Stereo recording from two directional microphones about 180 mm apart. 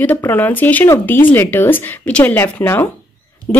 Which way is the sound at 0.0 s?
10° left (ahead or behind).